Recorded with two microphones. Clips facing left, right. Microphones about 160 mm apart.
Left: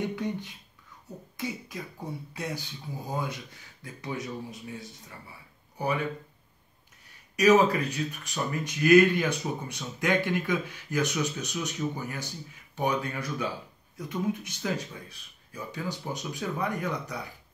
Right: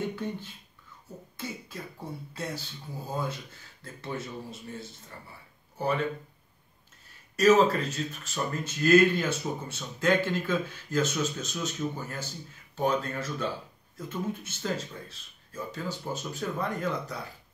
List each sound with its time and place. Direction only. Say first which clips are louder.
0.0 s speech: left 2 dB; 15° left (ahead or behind)
7.3 s speech: even; 15° left (ahead or behind)